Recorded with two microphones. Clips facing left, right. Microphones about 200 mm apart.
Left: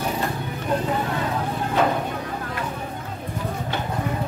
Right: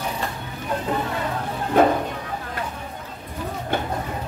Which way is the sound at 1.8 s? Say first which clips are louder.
Right 5 dB; 50° right (ahead or behind).